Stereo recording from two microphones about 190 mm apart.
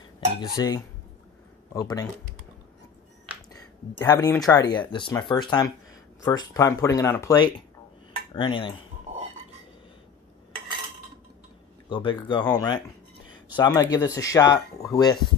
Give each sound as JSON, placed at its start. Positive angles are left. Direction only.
{"t": 0.4, "sound": "speech", "side_deg": 20}
{"t": 3.5, "sound": "speech", "side_deg": 15}
{"t": 8.3, "sound": "dishes", "side_deg": 25}
{"t": 11.9, "sound": "speech", "side_deg": 25}